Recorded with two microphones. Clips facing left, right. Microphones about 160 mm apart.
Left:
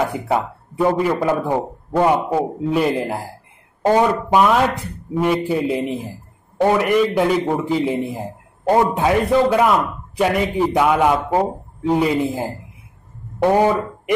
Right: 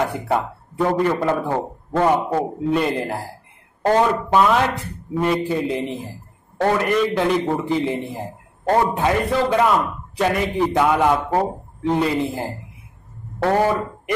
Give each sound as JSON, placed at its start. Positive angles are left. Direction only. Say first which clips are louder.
{"t": 0.0, "sound": "speech", "louder": "left 1 dB", "side_deg": 10}
{"t": 5.1, "sound": "speech", "louder": "left 2 dB", "side_deg": 0}